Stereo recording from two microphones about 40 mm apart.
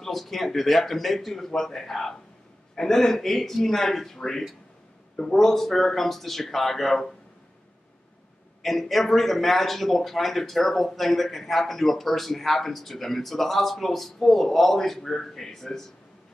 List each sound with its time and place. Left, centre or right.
0.0 s a man's voice: centre
8.6 s speech: centre